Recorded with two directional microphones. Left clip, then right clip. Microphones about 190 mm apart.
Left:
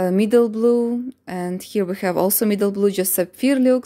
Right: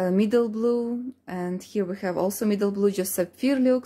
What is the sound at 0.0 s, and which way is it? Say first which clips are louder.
Speech: left 6 dB; 35° left (ahead or behind).